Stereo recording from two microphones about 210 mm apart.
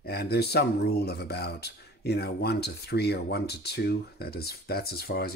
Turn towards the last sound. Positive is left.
turn(degrees=45)  # may be behind; listen again after turning